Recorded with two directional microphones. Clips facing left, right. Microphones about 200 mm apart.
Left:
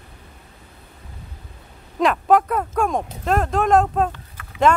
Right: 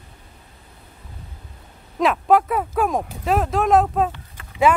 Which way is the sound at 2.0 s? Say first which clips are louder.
Even; centre (ahead or behind).